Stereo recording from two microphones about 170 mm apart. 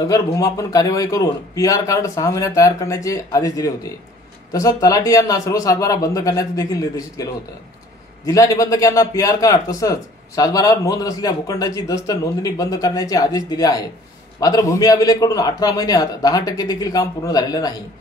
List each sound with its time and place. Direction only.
0.0 s a man's voice: 20° left (ahead or behind)
8.3 s a man's voice: 20° left (ahead or behind)